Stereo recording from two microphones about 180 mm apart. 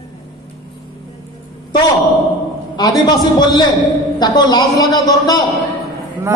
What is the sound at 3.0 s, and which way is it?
A man's voice, 25° left (ahead or behind).